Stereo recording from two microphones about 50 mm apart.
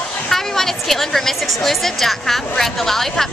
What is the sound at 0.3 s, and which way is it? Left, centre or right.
A woman's voice, centre.